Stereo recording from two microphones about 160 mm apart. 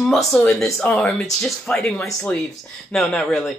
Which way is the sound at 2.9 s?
5° left (ahead or behind).